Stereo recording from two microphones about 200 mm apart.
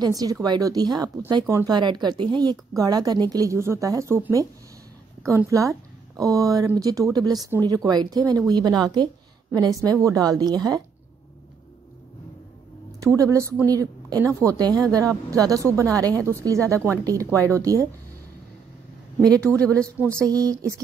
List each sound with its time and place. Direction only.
0.0 s a woman's voice: 20° right (ahead or behind)
13.0 s a woman's voice: 15° right (ahead or behind)
19.6 s a woman's voice: 5° left (ahead or behind)
20.2 s a woman's voice: 15° right (ahead or behind)